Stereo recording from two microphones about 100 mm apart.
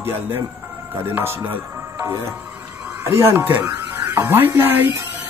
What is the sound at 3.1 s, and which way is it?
Speech, 25° right (ahead or behind).